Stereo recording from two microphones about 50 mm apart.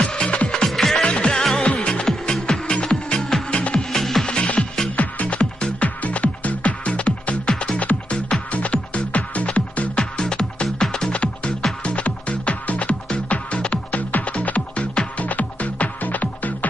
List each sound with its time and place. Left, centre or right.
0.0 s music: centre
0.7 s music: centre
1.0 s music: left
1.3 s music: centre
1.6 s music: centre
3.2 s music: centre
4.3 s music: centre